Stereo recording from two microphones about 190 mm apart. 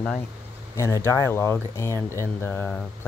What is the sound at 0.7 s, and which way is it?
Speech, 15° left (ahead or behind).